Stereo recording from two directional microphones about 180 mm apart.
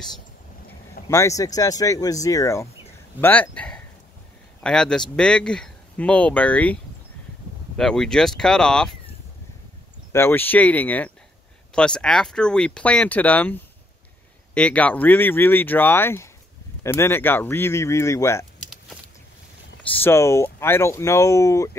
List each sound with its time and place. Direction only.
1.0 s speech: 15° left (ahead or behind)
10.1 s speech: 10° left (ahead or behind)
19.9 s speech: 10° left (ahead or behind)